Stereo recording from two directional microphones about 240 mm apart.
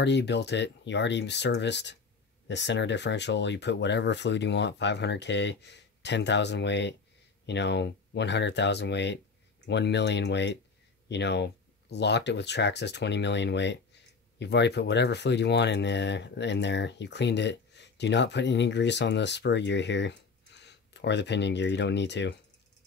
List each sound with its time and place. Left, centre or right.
0.0 s speech: left